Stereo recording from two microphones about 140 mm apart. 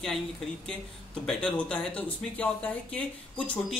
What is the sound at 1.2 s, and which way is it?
Speech, 5° left (ahead or behind).